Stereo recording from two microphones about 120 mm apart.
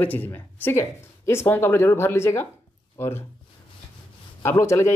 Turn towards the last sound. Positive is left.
turn(degrees=20)  # may be behind; listen again after turning